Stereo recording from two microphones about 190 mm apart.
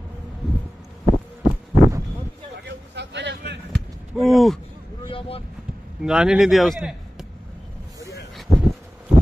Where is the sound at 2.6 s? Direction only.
65° right (ahead or behind).